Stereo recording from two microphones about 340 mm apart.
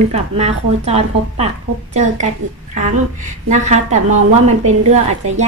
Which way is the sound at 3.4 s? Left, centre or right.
Right.